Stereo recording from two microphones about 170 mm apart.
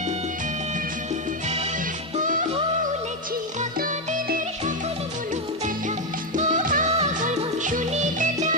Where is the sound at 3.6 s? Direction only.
45° right (ahead or behind).